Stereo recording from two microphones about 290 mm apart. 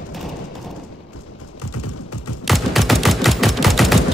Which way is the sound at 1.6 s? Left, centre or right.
Left.